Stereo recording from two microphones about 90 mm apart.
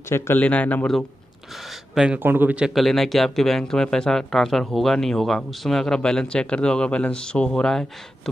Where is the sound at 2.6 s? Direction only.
Centre (ahead or behind).